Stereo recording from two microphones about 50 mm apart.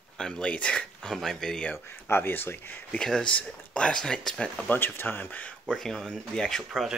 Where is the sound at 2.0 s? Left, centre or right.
Left.